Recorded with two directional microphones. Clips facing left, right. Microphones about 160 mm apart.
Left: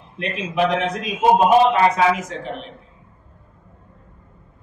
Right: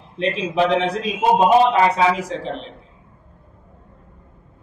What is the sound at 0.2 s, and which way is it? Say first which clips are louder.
A man's voice: right 2 dB; 30° right (ahead or behind).